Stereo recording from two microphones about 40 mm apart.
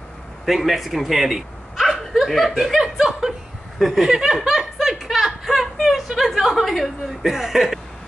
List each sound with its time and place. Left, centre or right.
0.5 s a man's voice: centre
1.8 s dog: centre
2.6 s speech: centre
4.1 s speech: centre
4.4 s speech: centre